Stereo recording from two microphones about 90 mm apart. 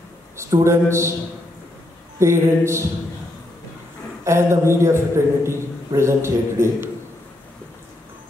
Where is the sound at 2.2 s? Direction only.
30° right (ahead or behind).